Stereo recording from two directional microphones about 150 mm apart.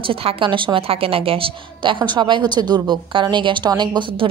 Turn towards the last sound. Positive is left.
turn(degrees=-30)  # may be behind; listen again after turning